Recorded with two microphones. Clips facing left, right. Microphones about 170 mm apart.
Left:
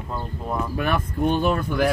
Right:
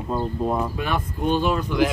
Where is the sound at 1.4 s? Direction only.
50° left (ahead or behind).